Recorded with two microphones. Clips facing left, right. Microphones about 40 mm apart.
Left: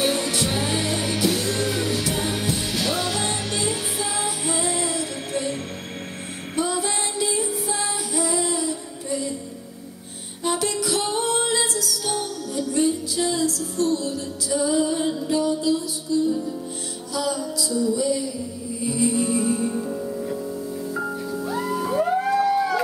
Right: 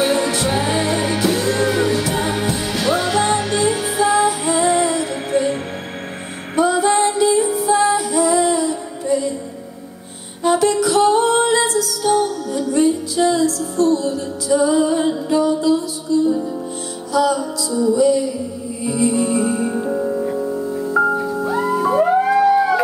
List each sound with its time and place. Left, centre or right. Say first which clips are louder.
0.0 s music: right 6 dB; centre
8.0 s female singing: right 8 dB; centre
8.5 s music: right 8 dB; centre
10.4 s music: right 9 dB; centre
17.1 s music: right 9 dB; right
19.9 s music: right 8 dB; right